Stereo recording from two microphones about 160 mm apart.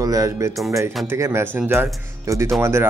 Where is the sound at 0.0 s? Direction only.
20° right (ahead or behind).